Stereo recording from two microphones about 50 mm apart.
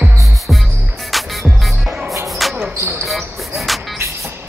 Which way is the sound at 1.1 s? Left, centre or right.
Centre.